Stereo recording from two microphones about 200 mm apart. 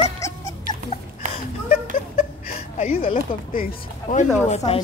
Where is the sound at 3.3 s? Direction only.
45° left (ahead or behind).